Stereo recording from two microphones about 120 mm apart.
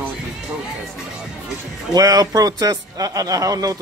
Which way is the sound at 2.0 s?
30° right (ahead or behind).